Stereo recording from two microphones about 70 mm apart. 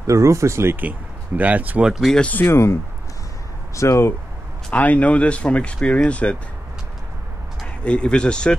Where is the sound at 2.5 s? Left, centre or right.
Left.